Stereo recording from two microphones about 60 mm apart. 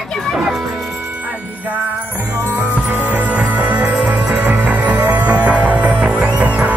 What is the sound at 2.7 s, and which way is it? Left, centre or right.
Music, right.